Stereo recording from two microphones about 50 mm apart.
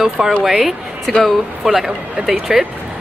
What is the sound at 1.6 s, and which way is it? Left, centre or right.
Speech, centre.